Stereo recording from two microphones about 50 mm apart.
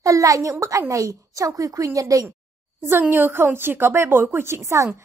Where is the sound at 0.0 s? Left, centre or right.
Right.